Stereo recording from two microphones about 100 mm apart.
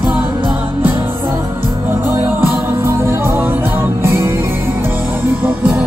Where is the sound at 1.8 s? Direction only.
20° right (ahead or behind).